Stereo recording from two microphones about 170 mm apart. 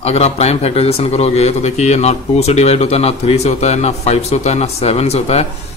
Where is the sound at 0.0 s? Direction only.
40° left (ahead or behind).